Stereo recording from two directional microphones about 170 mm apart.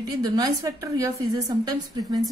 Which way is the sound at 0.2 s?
20° right (ahead or behind).